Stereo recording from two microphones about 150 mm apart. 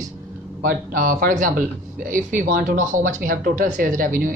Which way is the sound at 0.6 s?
60° right (ahead or behind).